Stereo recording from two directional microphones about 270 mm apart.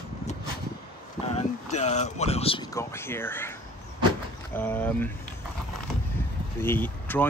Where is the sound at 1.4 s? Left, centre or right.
Left; by 3.5 s centre.